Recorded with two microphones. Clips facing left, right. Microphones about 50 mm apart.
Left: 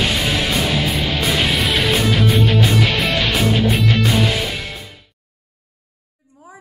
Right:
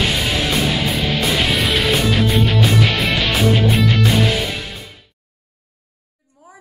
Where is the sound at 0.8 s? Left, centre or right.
Centre.